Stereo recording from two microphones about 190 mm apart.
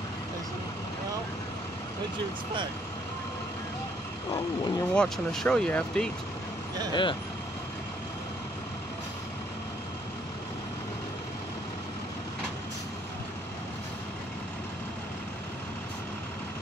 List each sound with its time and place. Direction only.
4.3 s speech: 25° left (ahead or behind)
4.9 s speech: centre (ahead or behind)
6.9 s speech: 25° left (ahead or behind)